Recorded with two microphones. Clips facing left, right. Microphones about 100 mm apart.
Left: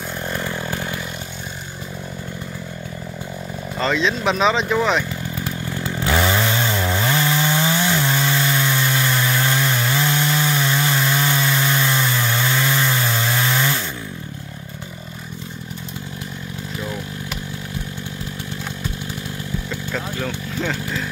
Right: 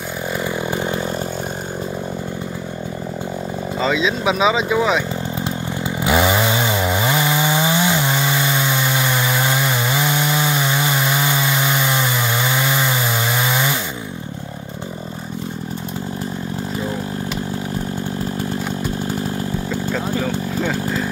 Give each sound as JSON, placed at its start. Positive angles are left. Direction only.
{"t": 0.7, "sound": "chainsaw", "side_deg": -25}
{"t": 3.8, "sound": "speech", "side_deg": -5}
{"t": 5.4, "sound": "chainsaw", "side_deg": -15}
{"t": 19.9, "sound": "vehicle", "side_deg": -10}